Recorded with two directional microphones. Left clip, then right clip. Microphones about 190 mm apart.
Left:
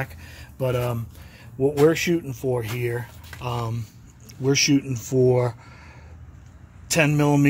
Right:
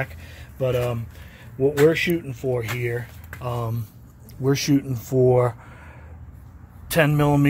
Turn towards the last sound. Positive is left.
turn(degrees=5)  # may be behind; listen again after turning